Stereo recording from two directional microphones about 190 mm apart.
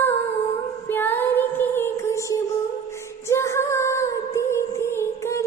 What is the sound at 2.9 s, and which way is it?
Music, 15° left (ahead or behind).